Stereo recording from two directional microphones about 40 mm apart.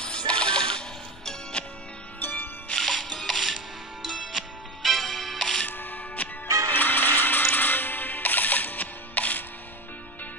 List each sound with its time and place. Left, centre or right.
0.0 s music: left
2.1 s music: left
2.8 s music: centre
3.4 s music: centre
5.7 s music: left
6.2 s music: left
6.7 s music: left